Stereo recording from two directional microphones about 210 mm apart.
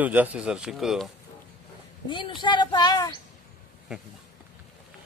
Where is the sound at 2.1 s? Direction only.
20° left (ahead or behind).